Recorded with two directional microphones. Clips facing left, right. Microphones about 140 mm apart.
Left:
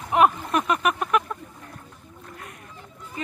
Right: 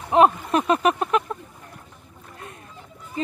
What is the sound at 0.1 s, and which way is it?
Speech, 30° right (ahead or behind).